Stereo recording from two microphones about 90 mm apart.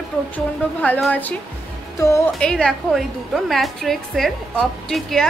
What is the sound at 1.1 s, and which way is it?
Speech, 15° left (ahead or behind).